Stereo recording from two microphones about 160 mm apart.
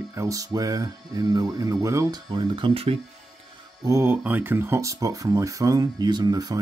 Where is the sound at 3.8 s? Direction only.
15° right (ahead or behind).